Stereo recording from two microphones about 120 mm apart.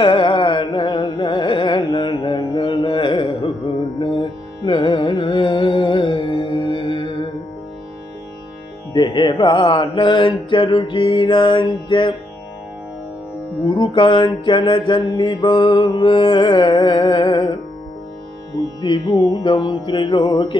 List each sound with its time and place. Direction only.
0.0 s music: 45° left (ahead or behind)
8.9 s mantra: 40° left (ahead or behind)
13.7 s mantra: 45° left (ahead or behind)
19.1 s music: 30° left (ahead or behind)
19.5 s mantra: 45° left (ahead or behind)